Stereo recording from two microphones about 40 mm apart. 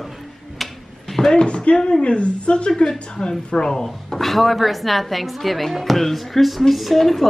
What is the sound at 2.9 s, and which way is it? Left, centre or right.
Speech, centre.